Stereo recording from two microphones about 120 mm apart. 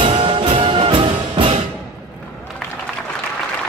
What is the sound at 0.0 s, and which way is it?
Music, 45° right (ahead or behind).